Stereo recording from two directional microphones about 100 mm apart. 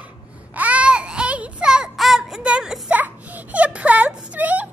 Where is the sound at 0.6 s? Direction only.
15° right (ahead or behind).